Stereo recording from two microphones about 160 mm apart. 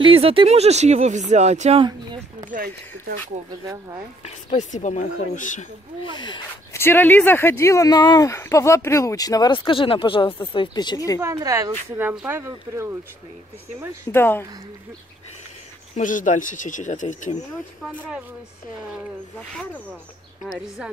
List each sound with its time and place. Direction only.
0.0 s speech: 35° right (ahead or behind)
3.6 s speech: 20° right (ahead or behind)
4.2 s speech: 40° left (ahead or behind)
6.0 s speech: 30° left (ahead or behind)
6.7 s speech: 15° left (ahead or behind)
11.1 s speech: 20° right (ahead or behind)
14.1 s speech: 15° left (ahead or behind)
16.0 s speech: 55° left (ahead or behind)
20.6 s speech: centre (ahead or behind)